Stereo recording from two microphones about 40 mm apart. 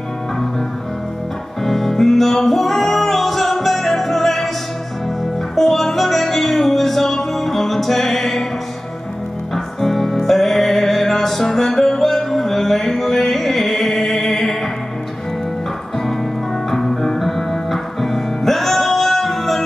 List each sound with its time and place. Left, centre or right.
1.6 s music: centre
5.6 s music: centre
9.8 s music: centre
16.7 s music: centre